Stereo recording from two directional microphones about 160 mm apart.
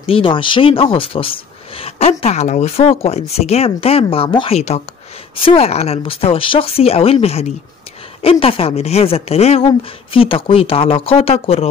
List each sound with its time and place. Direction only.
0.0 s speech: 35° left (ahead or behind)